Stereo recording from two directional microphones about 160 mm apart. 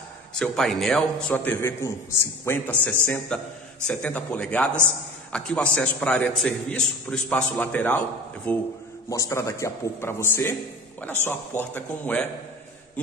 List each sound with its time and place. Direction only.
0.3 s a man's voice: 5° left (ahead or behind)